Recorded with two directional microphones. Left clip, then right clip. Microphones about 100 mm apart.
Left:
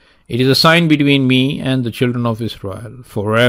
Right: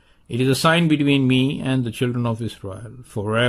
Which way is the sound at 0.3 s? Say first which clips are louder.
Left 7 dB; 35° left (ahead or behind).